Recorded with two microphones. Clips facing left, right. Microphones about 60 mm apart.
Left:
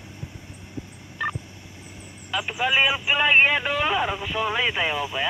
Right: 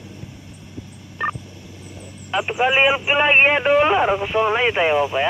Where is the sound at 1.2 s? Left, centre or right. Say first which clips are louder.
Right 4 dB; right.